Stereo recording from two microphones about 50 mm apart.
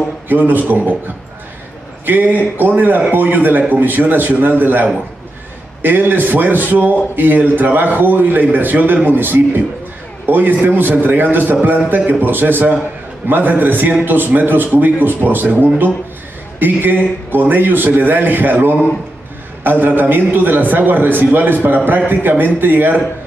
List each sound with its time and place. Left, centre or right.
0.3 s a man's voice: right